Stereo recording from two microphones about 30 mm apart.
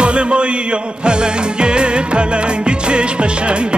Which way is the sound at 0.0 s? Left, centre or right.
Right.